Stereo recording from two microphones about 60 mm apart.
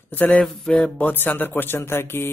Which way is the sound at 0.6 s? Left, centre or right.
Centre.